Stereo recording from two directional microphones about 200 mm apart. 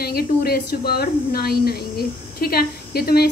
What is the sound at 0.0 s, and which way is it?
A woman's voice, 50° left (ahead or behind).